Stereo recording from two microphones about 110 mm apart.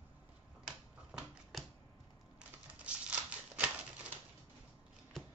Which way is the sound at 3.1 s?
15° right (ahead or behind).